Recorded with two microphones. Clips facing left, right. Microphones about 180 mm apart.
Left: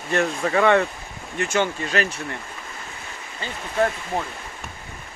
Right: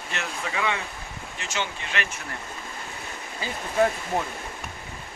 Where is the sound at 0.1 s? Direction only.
50° left (ahead or behind).